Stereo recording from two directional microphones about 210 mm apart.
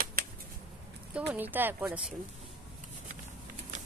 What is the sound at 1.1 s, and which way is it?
Speech, 5° right (ahead or behind).